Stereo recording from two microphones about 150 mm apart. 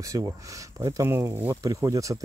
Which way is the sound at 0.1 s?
25° right (ahead or behind).